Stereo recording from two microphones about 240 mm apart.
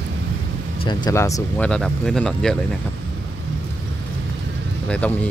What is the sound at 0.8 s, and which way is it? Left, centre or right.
Speech, centre.